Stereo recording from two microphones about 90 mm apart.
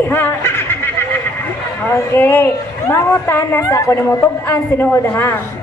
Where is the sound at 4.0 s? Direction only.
20° left (ahead or behind).